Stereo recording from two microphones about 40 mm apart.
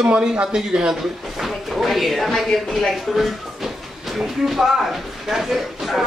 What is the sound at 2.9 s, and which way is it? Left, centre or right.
Speech, centre.